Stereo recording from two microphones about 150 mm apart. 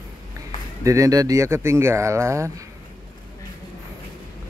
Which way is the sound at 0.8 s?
20° right (ahead or behind).